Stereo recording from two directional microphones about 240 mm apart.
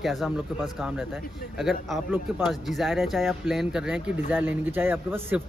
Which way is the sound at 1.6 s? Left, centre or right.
Centre.